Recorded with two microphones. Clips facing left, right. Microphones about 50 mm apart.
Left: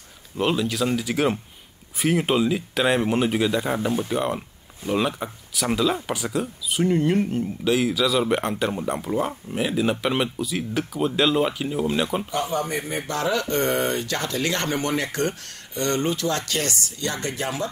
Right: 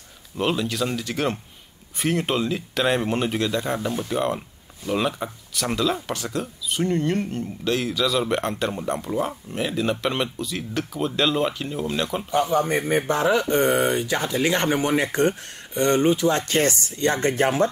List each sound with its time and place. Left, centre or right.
0.4 s speech: centre
12.5 s a man's voice: right
13.1 s speech: right